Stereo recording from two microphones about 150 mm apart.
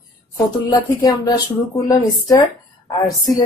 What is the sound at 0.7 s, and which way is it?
Speech, 25° left (ahead or behind).